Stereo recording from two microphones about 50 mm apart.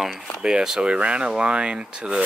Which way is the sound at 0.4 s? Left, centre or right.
Centre.